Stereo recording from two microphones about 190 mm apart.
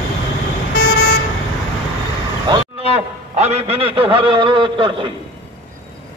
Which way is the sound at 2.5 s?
25° right (ahead or behind).